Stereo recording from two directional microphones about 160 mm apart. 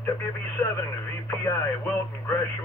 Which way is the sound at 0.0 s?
15° left (ahead or behind).